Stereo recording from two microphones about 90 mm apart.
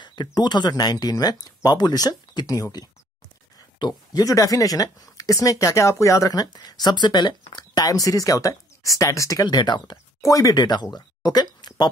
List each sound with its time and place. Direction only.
0.0 s speech: 55° left (ahead or behind)
3.8 s speech: 45° left (ahead or behind)
9.5 s speech: 55° left (ahead or behind)
10.2 s speech: 40° left (ahead or behind)